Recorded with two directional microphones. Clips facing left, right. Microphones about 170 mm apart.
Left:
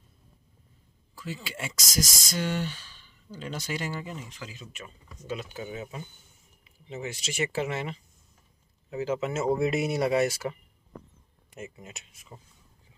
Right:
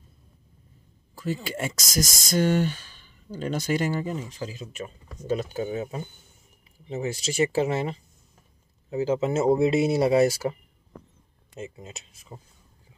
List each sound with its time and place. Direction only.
1.1 s speech: 45° right (ahead or behind); by 12.4 s 30° right (ahead or behind)